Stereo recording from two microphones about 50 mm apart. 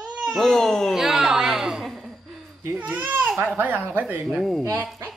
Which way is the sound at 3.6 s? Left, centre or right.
Right.